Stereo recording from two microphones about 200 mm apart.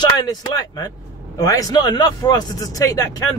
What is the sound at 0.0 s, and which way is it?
Speech, 20° left (ahead or behind).